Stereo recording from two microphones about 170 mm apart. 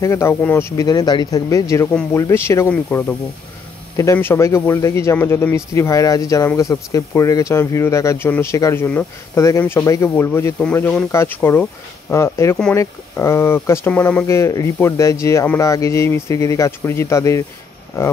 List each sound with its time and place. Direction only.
0.0 s speech: 15° left (ahead or behind)